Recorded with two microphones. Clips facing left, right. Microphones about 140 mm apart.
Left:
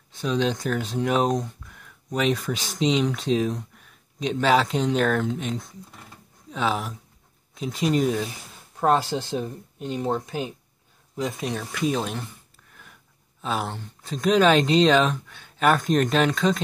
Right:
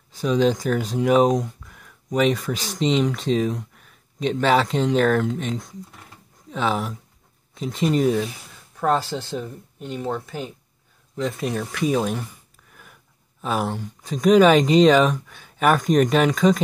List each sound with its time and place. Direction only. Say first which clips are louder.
0.1 s speech: right 5 dB; 5° right (ahead or behind)
8.7 s speech: even; 20° left (ahead or behind)
11.1 s speech: right 3 dB; 5° left (ahead or behind)